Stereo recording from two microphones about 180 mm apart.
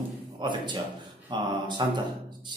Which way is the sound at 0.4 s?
25° right (ahead or behind).